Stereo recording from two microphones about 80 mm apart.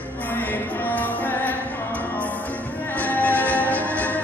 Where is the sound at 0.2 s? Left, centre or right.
Left.